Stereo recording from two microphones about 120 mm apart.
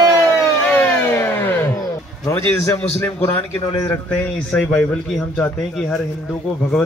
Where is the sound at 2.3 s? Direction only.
15° left (ahead or behind).